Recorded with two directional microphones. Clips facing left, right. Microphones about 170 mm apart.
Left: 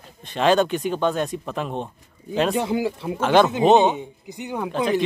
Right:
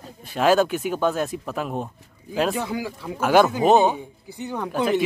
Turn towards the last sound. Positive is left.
turn(degrees=-5)  # may be behind; listen again after turning